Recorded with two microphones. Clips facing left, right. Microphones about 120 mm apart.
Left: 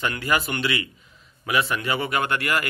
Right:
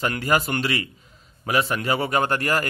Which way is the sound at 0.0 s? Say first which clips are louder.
Right 2 dB; 40° right (ahead or behind).